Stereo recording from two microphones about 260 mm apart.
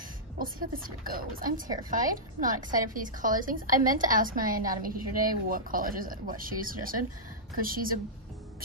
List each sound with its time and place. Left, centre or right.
0.4 s speech: right